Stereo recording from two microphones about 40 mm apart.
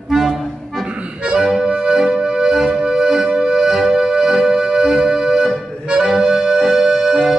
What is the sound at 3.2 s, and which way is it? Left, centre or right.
Music, right.